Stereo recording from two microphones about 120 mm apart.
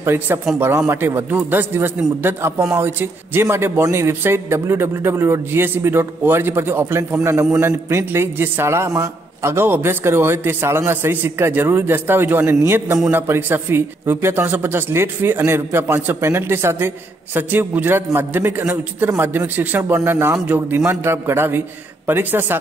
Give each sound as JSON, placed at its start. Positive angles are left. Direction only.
{"t": 0.0, "sound": "a man's voice", "side_deg": -20}